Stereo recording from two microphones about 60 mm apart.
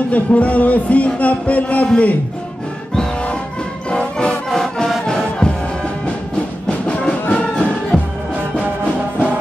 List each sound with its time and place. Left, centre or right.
0.1 s music: left
6.9 s music: centre
7.9 s music: centre